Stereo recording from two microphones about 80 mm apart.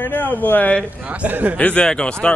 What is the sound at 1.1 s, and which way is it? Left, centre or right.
Speech, centre.